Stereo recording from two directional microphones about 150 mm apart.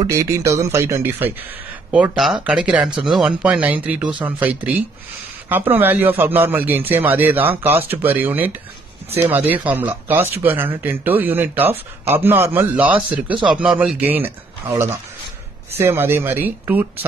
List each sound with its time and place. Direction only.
0.0 s speech: 20° right (ahead or behind)
2.1 s a man's voice: 5° right (ahead or behind)